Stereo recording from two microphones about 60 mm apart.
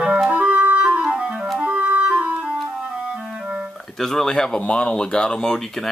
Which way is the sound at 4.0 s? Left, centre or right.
Centre.